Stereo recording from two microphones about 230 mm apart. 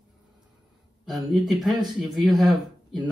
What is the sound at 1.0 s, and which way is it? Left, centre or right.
Speech, centre.